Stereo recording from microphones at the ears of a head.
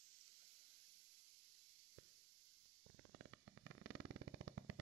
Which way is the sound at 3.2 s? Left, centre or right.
Right.